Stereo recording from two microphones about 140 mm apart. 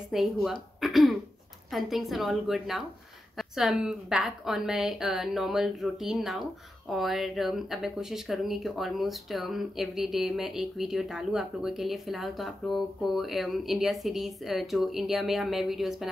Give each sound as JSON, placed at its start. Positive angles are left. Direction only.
{"t": 0.1, "sound": "speech", "side_deg": 0}